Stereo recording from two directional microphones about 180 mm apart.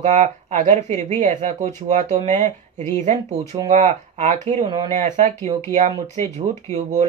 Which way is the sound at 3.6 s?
40° right (ahead or behind).